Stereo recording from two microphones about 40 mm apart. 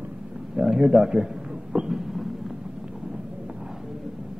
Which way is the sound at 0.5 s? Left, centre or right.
Centre.